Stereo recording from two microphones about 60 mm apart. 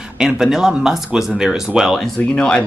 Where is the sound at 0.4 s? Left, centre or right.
Centre.